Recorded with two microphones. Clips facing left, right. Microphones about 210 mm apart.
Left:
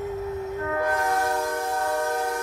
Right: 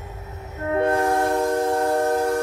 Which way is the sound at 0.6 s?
25° right (ahead or behind).